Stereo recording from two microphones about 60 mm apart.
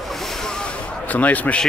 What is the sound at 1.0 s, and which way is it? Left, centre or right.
Speech, left.